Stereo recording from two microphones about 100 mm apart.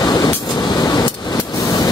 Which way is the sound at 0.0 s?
40° left (ahead or behind).